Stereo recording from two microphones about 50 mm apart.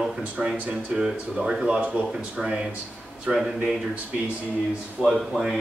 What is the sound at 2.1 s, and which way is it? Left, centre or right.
Speech, centre.